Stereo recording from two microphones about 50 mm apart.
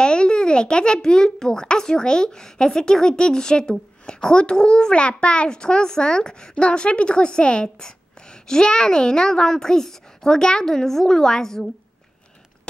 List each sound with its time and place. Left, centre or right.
0.0 s a child's voice: centre